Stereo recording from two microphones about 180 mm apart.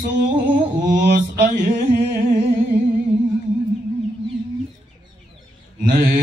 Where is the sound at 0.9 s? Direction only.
45° right (ahead or behind).